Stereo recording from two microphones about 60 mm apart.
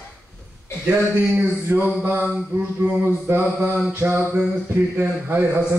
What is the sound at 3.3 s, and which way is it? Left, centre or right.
Speech, right.